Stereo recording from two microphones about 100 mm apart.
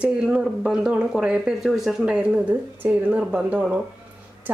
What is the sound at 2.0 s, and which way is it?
Speech, 15° right (ahead or behind).